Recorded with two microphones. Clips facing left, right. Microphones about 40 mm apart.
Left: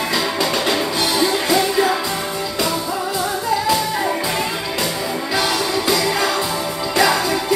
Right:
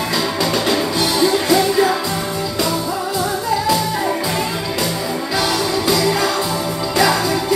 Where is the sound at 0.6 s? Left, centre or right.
Left.